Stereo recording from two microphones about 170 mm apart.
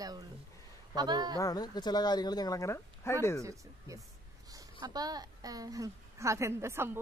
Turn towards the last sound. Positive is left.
turn(degrees=-15)  # may be behind; listen again after turning